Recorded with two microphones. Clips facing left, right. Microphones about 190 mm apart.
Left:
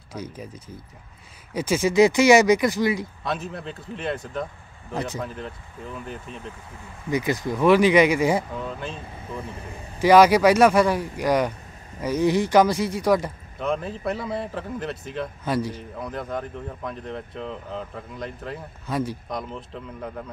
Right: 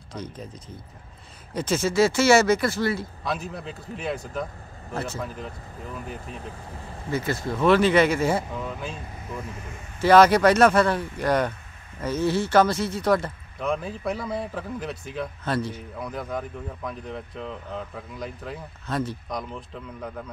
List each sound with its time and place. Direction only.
0.1 s speech: 10° left (ahead or behind)
1.5 s speech: 10° left (ahead or behind)
3.3 s speech: centre (ahead or behind)
4.9 s speech: 15° left (ahead or behind)
5.2 s speech: centre (ahead or behind)
7.1 s speech: 15° left (ahead or behind)
8.5 s speech: centre (ahead or behind)
9.4 s speech: 30° left (ahead or behind)
9.9 s speech: 10° left (ahead or behind)
13.6 s speech: centre (ahead or behind)
15.4 s speech: 10° left (ahead or behind)
16.0 s speech: centre (ahead or behind)
18.9 s speech: 10° left (ahead or behind)